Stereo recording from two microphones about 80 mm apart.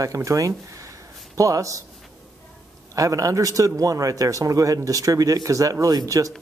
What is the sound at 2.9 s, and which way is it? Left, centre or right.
Speech, right.